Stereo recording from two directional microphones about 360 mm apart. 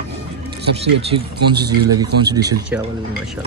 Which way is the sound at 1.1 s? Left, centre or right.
Right.